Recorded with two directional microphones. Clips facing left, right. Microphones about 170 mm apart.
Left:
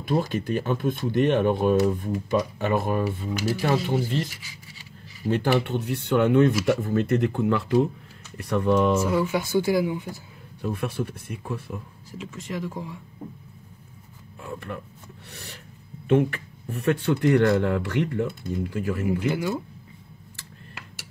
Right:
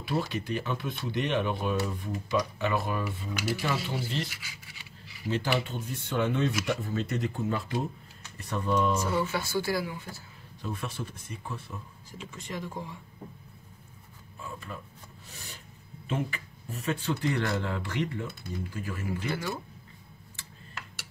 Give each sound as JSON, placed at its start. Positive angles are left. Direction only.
{"t": 0.0, "sound": "speech", "side_deg": 45}
{"t": 5.3, "sound": "speech", "side_deg": 55}
{"t": 9.0, "sound": "speech", "side_deg": 15}
{"t": 10.6, "sound": "speech", "side_deg": 60}
{"t": 12.1, "sound": "speech", "side_deg": 0}
{"t": 14.4, "sound": "a sound", "side_deg": 65}
{"t": 15.2, "sound": "speech", "side_deg": 65}
{"t": 19.1, "sound": "speech", "side_deg": 15}